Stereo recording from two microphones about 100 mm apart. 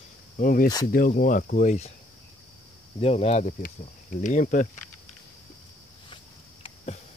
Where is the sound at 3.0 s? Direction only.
90° left.